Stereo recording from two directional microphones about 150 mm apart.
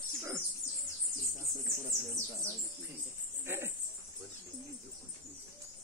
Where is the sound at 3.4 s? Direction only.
15° right (ahead or behind).